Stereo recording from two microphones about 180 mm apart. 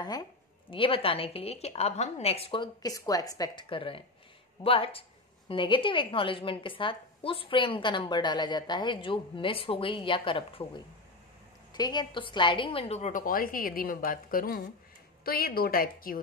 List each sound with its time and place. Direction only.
0.0 s a woman's voice: 25° left (ahead or behind)
11.7 s a woman's voice: 25° left (ahead or behind); by 16.2 s 55° left (ahead or behind)